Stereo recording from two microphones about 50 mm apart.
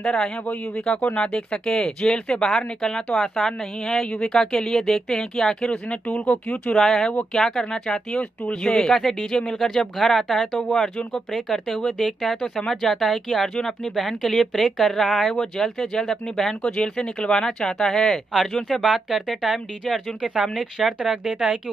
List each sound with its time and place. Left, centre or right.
0.0 s speech: centre
6.8 s speech: centre
8.9 s speech: centre
9.9 s speech: centre
10.4 s speech: centre
11.3 s speech: centre
15.3 s speech: centre
18.9 s speech: centre